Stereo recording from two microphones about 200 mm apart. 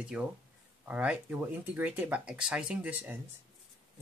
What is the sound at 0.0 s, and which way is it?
Speech, 5° right (ahead or behind).